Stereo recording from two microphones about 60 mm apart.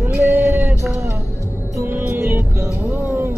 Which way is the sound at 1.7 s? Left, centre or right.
Right.